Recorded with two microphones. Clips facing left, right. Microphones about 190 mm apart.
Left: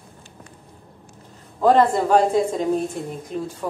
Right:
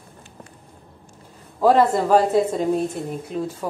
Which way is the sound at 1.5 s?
5° right (ahead or behind).